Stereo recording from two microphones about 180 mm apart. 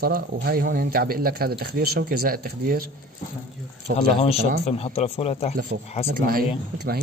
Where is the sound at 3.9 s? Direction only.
55° right (ahead or behind).